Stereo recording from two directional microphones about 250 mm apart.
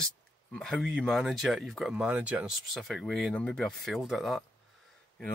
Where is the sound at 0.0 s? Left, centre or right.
Centre.